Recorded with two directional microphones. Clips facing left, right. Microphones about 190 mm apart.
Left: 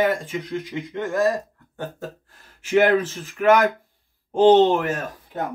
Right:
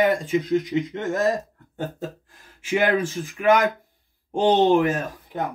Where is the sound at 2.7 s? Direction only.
15° right (ahead or behind).